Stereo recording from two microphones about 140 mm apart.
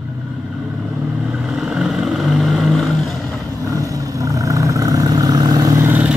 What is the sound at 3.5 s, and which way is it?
Vehicle, 25° right (ahead or behind).